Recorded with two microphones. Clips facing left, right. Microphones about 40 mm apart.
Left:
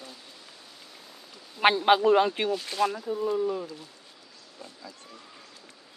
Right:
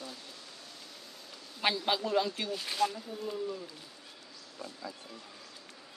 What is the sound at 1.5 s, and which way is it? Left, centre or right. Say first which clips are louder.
Speech: left 10 dB; left.